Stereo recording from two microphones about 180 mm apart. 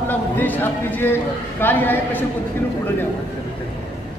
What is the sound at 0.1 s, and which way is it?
Speech, 10° left (ahead or behind).